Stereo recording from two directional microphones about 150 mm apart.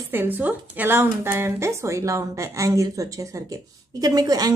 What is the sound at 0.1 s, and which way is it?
A woman's voice, 15° right (ahead or behind).